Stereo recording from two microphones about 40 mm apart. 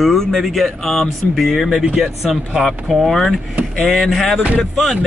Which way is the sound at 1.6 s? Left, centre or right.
Centre.